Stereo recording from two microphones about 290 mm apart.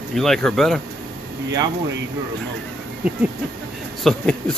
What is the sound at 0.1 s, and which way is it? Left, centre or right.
Speech, centre.